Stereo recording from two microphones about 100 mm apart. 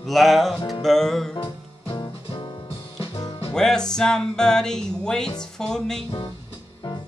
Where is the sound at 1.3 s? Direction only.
70° left (ahead or behind).